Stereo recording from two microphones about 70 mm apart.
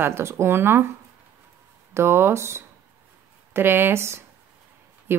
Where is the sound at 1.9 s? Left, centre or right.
Right.